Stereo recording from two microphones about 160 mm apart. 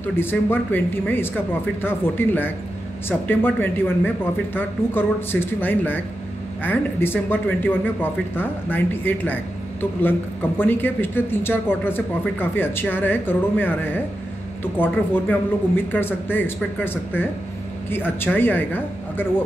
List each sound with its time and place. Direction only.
0.1 s a man's voice: 15° left (ahead or behind)